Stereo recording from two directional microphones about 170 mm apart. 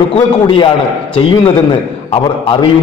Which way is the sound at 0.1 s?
30° left (ahead or behind).